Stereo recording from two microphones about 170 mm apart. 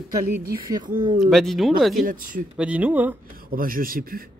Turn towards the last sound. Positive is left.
turn(degrees=-60)  # may be behind; listen again after turning